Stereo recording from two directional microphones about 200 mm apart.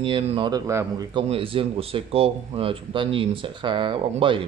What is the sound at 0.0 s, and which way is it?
A man's voice, 25° right (ahead or behind).